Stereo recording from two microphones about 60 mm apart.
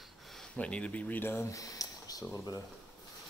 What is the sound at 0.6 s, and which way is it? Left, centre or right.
Speech, left.